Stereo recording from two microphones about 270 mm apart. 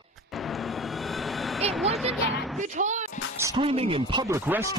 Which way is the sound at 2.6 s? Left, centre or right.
Right.